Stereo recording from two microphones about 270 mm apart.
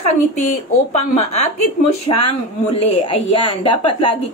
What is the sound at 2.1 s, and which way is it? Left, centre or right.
A woman's voice, centre.